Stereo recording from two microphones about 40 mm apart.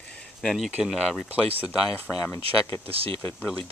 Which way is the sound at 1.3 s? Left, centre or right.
Right.